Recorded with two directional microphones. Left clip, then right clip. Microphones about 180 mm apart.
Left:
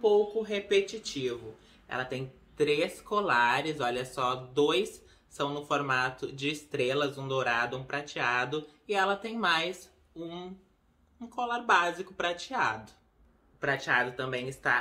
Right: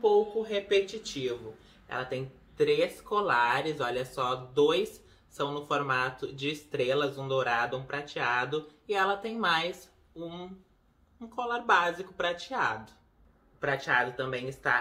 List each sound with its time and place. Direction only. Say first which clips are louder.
0.0 s speech: even; 10° left (ahead or behind)